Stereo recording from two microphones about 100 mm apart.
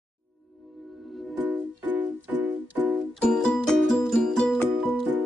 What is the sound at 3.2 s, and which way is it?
Music, 5° left (ahead or behind).